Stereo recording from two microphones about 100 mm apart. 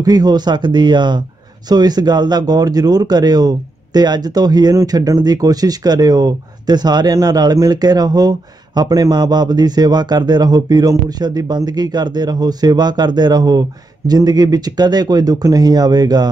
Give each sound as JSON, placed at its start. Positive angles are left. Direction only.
{"t": 0.0, "sound": "speech", "side_deg": -40}